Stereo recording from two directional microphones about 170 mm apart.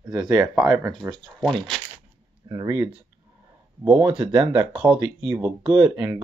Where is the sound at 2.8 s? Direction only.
5° right (ahead or behind).